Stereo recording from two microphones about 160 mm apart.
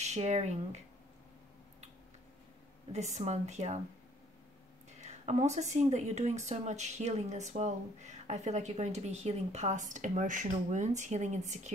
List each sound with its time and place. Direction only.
0.0 s speech: 45° right (ahead or behind)
2.9 s speech: 45° right (ahead or behind)
5.0 s speech: 45° right (ahead or behind)